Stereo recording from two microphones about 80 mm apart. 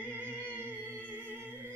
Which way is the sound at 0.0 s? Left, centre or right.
Right.